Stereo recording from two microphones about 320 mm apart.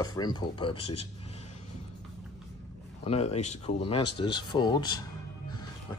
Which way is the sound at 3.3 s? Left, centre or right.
Left.